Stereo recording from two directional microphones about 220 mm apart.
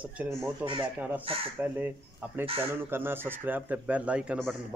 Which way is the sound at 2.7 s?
10° right (ahead or behind).